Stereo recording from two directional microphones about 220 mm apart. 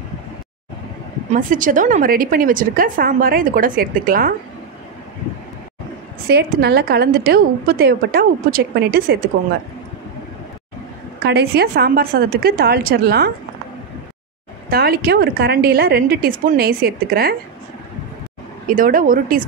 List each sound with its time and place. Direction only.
1.3 s a woman's voice: 35° right (ahead or behind)
6.2 s a woman's voice: 45° right (ahead or behind)
11.2 s a woman's voice: 50° right (ahead or behind)
14.7 s a woman's voice: 45° right (ahead or behind)
18.7 s a woman's voice: 40° right (ahead or behind)